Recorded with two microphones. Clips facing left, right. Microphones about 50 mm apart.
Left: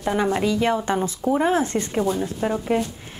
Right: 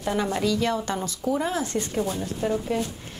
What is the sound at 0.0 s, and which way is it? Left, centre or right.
Speech, left.